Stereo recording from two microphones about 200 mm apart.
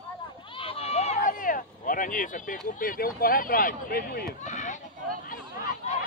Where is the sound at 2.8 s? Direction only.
45° left (ahead or behind).